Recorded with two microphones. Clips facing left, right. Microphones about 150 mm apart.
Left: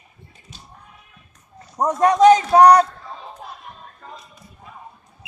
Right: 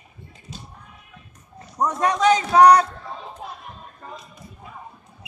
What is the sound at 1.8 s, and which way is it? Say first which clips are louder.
A man's voice: left 6 dB; 40° left (ahead or behind).